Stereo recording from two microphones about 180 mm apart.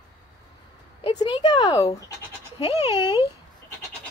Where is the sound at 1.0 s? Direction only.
25° left (ahead or behind).